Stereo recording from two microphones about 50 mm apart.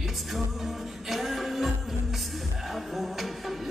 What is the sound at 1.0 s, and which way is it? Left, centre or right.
Music, centre.